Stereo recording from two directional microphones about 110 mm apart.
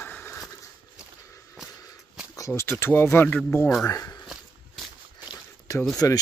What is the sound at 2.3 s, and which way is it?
Speech, 30° left (ahead or behind).